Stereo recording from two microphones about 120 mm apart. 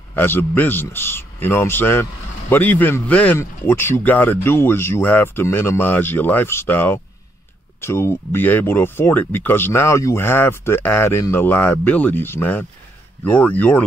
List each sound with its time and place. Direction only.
0.1 s speech: 15° left (ahead or behind)